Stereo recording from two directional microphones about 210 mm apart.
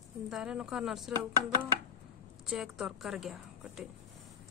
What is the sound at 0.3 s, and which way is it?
Speech, centre (ahead or behind).